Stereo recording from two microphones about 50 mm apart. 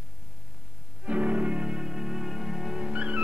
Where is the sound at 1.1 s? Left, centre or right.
Right.